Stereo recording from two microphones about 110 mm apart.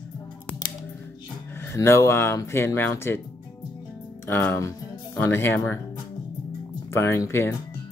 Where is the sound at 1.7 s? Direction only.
25° left (ahead or behind).